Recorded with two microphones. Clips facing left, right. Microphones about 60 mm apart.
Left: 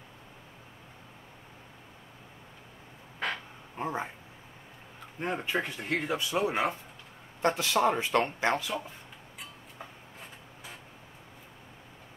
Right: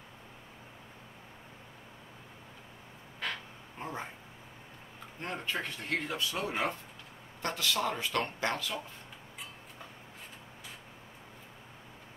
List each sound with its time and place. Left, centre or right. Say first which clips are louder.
3.7 s speech: left 6 dB; centre
5.2 s speech: left 5 dB; centre